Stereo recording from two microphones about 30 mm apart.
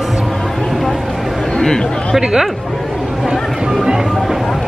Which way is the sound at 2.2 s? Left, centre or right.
Right.